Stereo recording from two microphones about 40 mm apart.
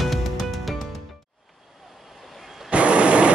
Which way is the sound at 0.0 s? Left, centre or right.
Centre.